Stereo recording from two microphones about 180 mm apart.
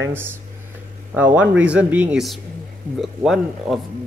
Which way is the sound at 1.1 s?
10° right (ahead or behind).